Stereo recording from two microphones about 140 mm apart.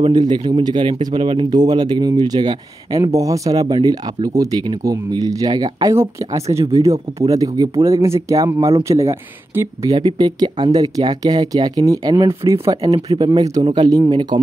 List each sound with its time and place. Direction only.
0.1 s speech: 30° right (ahead or behind)
9.9 s speech: 30° right (ahead or behind)
12.9 s speech: 40° right (ahead or behind)